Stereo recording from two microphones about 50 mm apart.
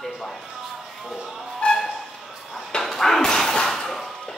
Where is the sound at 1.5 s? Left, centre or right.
Centre.